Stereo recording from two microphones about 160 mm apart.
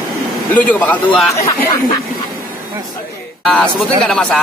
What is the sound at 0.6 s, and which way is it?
Speech, 10° left (ahead or behind).